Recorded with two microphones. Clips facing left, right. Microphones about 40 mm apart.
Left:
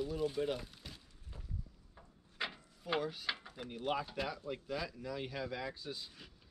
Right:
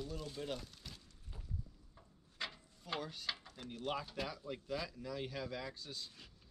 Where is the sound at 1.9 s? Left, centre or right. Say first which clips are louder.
Left 4 dB; left.